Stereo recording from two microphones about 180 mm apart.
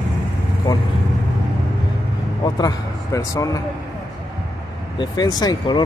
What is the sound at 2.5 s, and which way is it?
Speech, 20° left (ahead or behind).